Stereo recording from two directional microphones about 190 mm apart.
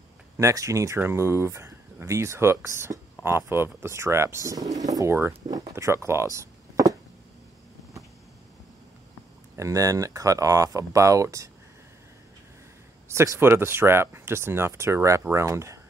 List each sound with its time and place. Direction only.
0.4 s speech: 15° right (ahead or behind)
5.8 s a sound: 15° right (ahead or behind)
9.6 s speech: 15° right (ahead or behind)
13.1 s speech: 15° right (ahead or behind)